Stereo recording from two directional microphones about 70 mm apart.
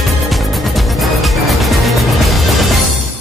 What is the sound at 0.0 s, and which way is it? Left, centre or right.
Music, centre.